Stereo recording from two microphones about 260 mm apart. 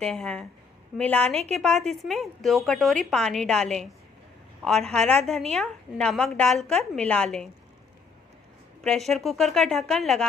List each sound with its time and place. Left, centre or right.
0.0 s a woman's voice: centre
8.8 s a woman's voice: centre